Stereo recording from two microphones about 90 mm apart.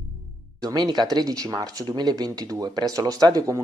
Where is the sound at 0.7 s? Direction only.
50° right (ahead or behind).